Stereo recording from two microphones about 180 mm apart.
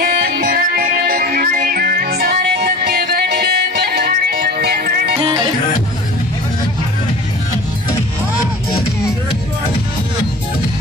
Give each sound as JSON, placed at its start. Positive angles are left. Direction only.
{"t": 0.0, "sound": "music", "side_deg": -55}